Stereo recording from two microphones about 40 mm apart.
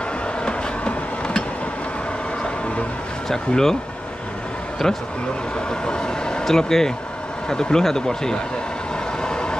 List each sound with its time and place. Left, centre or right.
0.5 s a sound: left
3.3 s speech: centre
4.8 s speech: centre
9.2 s vehicle: centre